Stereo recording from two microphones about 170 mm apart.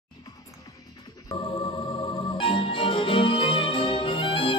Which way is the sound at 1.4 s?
30° left (ahead or behind).